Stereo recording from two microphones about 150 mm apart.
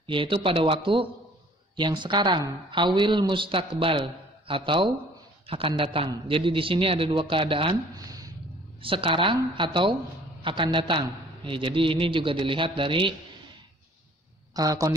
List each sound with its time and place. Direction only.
0.0 s speech: 35° right (ahead or behind)
8.8 s speech: 35° right (ahead or behind)
14.5 s speech: 25° right (ahead or behind)